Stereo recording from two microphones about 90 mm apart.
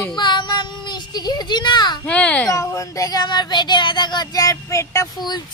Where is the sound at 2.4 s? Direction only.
35° left (ahead or behind).